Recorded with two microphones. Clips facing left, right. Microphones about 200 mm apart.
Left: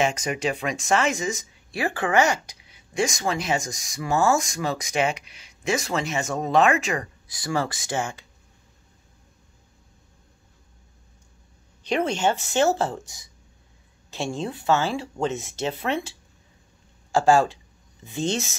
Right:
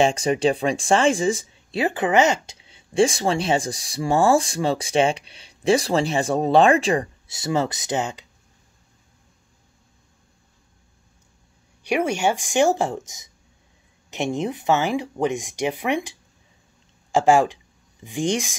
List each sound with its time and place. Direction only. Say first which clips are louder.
0.0 s speech: right 6 dB; 30° right (ahead or behind)
11.8 s speech: right 2 dB; 10° right (ahead or behind)